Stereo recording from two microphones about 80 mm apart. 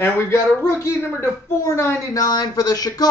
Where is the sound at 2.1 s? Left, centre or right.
Left.